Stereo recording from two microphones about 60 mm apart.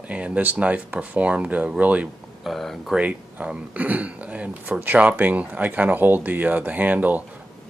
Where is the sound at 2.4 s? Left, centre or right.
Centre.